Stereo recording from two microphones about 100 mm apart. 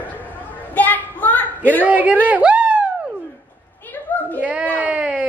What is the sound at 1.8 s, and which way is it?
A woman's voice, 15° right (ahead or behind).